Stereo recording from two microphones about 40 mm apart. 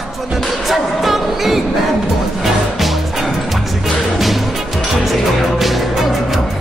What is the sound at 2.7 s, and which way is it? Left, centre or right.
Music, centre.